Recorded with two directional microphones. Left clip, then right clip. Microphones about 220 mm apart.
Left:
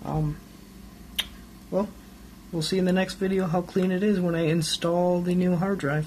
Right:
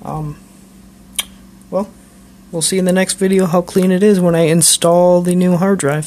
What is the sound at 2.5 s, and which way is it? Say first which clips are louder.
Speech: right 10 dB; 45° right (ahead or behind).